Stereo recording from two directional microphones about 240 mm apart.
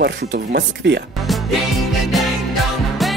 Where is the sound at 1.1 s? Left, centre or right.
Centre.